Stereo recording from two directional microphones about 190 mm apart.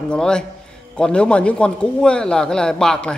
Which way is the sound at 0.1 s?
5° left (ahead or behind).